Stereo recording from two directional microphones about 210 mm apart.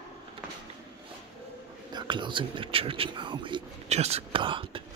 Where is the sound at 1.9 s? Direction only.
20° right (ahead or behind).